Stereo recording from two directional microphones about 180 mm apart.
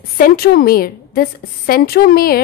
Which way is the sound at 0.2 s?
55° left (ahead or behind).